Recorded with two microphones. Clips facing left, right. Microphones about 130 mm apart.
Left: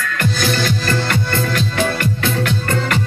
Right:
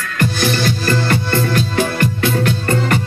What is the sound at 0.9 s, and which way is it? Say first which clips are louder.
Music: right 2 dB; 35° right (ahead or behind).